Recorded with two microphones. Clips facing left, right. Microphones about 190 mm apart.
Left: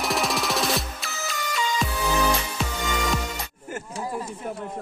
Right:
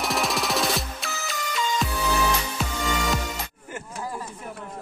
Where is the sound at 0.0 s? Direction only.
Centre (ahead or behind).